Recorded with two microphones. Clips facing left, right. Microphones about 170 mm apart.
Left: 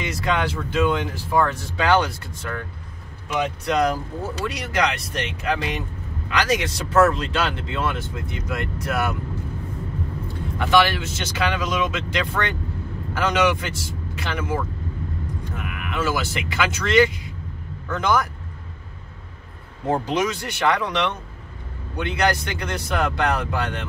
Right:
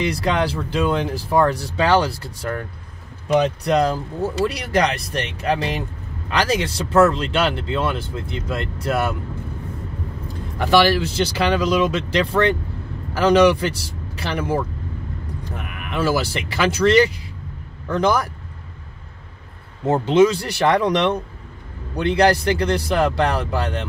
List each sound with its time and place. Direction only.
0.0 s speech: 35° right (ahead or behind)
10.6 s speech: 35° right (ahead or behind)
15.9 s speech: 35° right (ahead or behind)
19.9 s speech: 25° right (ahead or behind)